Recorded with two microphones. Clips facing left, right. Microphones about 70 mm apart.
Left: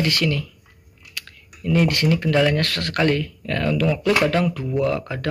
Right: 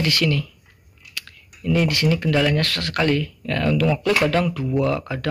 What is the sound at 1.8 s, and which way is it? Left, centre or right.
Speech, left.